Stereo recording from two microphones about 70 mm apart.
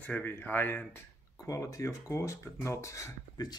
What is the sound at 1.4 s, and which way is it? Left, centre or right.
Speech, left.